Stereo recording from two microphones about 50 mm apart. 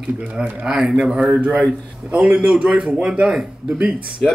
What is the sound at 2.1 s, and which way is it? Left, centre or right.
A man's voice, right.